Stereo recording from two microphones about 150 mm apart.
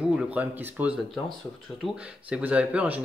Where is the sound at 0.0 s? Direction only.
5° right (ahead or behind).